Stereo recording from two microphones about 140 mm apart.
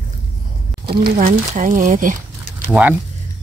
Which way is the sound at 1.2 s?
70° right (ahead or behind).